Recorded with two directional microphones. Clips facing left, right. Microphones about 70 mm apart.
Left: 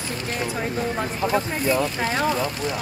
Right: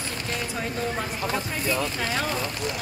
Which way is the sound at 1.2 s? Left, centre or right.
Left.